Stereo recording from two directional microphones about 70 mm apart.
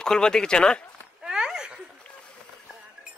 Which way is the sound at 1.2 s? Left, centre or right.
Centre.